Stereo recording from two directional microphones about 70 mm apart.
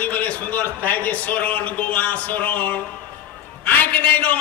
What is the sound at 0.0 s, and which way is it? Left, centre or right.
A man's voice, left.